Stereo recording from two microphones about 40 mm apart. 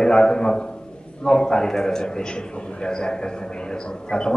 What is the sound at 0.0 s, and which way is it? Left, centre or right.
A man's voice, centre.